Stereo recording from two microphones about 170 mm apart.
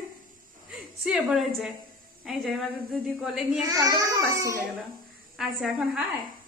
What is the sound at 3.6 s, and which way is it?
A child's voice, 20° right (ahead or behind).